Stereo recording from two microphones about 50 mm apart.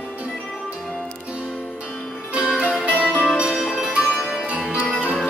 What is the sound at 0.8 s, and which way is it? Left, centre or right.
Music, centre.